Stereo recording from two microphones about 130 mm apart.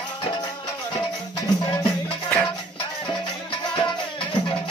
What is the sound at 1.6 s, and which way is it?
Music, 35° left (ahead or behind).